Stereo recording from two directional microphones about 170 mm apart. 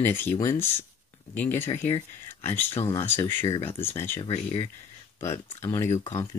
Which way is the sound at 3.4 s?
30° left (ahead or behind).